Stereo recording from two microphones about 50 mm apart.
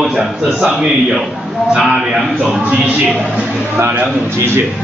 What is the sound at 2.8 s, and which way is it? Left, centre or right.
Speech, right.